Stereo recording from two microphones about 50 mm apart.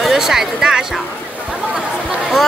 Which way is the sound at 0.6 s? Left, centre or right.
Centre.